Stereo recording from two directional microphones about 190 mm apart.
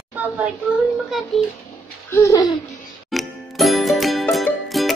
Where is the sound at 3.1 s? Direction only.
Centre (ahead or behind).